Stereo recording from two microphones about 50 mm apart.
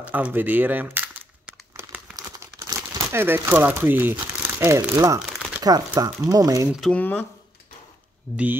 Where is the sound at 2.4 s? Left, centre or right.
Right.